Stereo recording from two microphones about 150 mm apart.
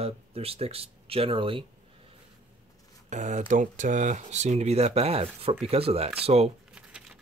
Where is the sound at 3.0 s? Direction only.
55° right (ahead or behind).